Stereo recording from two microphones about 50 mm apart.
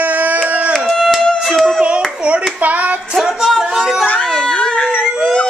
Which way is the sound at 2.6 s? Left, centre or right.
Right.